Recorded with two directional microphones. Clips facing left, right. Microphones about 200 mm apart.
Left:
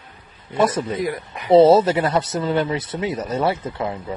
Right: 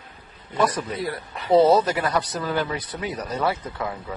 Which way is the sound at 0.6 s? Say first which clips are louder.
Left 4 dB; 25° left (ahead or behind).